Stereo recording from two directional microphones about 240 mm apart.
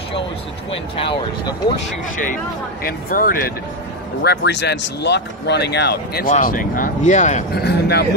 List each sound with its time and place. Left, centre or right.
0.7 s speech: left
2.8 s speech: left
7.5 s speech: left